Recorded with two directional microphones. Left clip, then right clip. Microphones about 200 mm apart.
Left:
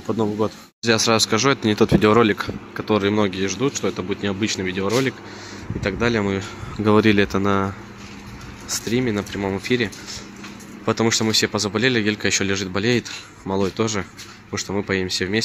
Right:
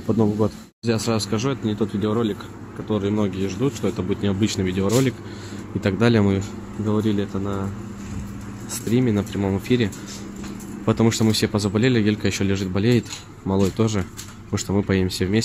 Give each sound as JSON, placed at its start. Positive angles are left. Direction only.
{"t": 0.0, "sound": "speech", "side_deg": -5}
{"t": 0.8, "sound": "speech", "side_deg": 10}
{"t": 5.8, "sound": "speech", "side_deg": -10}
{"t": 6.9, "sound": "speech", "side_deg": 25}
{"t": 8.6, "sound": "speech", "side_deg": 0}
{"t": 10.9, "sound": "speech", "side_deg": -5}